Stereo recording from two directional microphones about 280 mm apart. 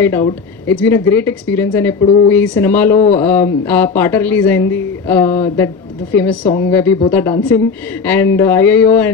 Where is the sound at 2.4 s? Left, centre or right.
Centre.